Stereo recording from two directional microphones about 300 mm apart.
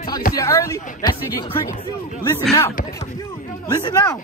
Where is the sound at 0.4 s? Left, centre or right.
Centre.